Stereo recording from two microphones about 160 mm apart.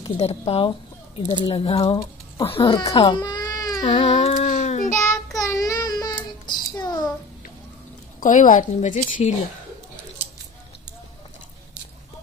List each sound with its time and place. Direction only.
0.0 s speech: 35° left (ahead or behind)
3.0 s baby cry: 30° left (ahead or behind)
3.8 s child singing: 40° left (ahead or behind)
5.5 s child singing: 20° left (ahead or behind)
8.2 s a woman's voice: 55° left (ahead or behind)